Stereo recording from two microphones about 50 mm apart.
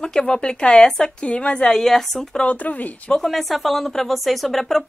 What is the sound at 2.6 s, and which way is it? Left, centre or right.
Speech, left.